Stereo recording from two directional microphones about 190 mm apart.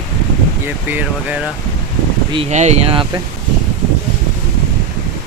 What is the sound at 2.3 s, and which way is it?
Speech, 35° right (ahead or behind).